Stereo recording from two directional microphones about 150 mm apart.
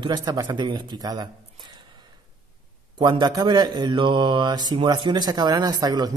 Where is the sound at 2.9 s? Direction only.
30° right (ahead or behind).